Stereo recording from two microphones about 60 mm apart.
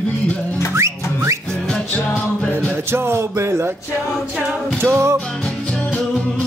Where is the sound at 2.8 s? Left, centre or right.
Right.